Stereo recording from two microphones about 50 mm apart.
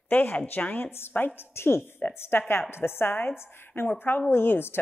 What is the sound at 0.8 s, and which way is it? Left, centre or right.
A woman's voice, left.